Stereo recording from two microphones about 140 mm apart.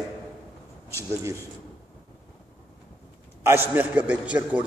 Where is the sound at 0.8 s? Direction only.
20° right (ahead or behind).